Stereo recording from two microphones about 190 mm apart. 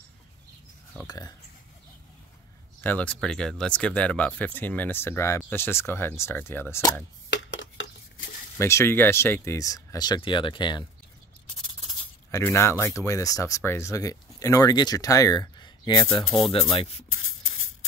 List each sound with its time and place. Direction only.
1.0 s speech: 20° left (ahead or behind)
2.8 s speech: 10° left (ahead or behind)
7.2 s a sound: 70° left (ahead or behind)
8.5 s speech: 15° left (ahead or behind)
12.3 s speech: 15° left (ahead or behind)
16.5 s speech: 35° left (ahead or behind)
17.1 s beatboxing: 90° left